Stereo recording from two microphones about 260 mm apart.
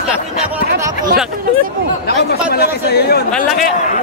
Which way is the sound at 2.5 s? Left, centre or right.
Left.